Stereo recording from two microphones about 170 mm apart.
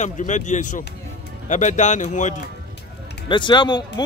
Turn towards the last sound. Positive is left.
turn(degrees=25)  # may be behind; listen again after turning